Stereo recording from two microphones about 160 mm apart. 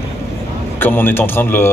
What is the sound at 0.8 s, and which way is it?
Speech, 15° left (ahead or behind).